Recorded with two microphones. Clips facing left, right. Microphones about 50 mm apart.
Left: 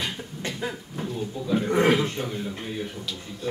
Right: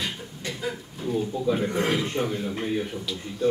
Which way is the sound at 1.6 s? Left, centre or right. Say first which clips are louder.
Left 4 dB; left.